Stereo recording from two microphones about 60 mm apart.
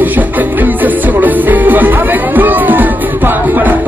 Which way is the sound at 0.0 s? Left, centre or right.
Right.